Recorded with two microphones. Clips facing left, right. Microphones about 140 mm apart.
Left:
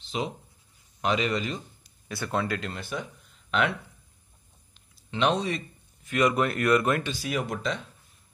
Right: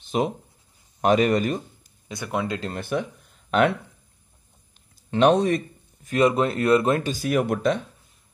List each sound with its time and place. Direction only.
0.0 s writing: 50° right (ahead or behind)
1.0 s a man's voice: 50° right (ahead or behind)
2.0 s speech: 15° right (ahead or behind)
2.6 s speech: 50° right (ahead or behind)
5.1 s speech: 50° right (ahead or behind)
6.0 s speech: 30° right (ahead or behind)
7.1 s speech: 50° right (ahead or behind)